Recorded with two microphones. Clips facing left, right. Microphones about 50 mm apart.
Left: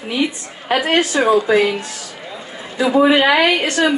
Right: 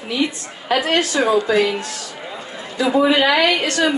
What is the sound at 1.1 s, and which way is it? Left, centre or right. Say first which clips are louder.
Speech: left 2 dB; centre.